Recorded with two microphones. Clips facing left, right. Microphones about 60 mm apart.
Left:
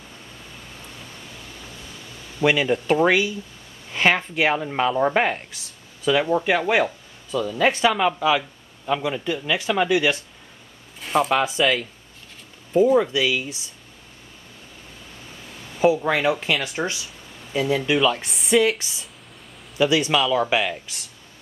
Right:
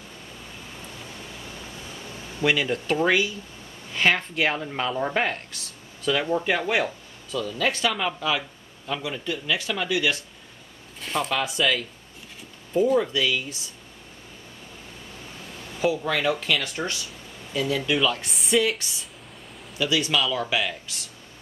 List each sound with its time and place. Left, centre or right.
2.4 s speech: centre
11.0 s speech: centre
12.8 s speech: centre
15.8 s speech: left
18.2 s speech: centre
19.8 s speech: left